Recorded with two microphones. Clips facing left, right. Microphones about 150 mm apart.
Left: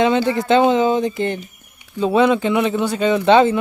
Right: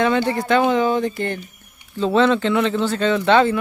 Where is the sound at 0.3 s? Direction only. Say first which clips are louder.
Left 3 dB; 20° left (ahead or behind).